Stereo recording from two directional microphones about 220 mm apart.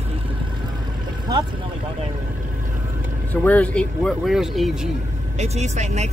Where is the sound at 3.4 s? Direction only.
5° left (ahead or behind).